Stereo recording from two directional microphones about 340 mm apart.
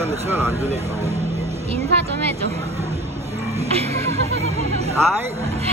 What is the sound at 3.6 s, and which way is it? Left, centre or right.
Music, centre.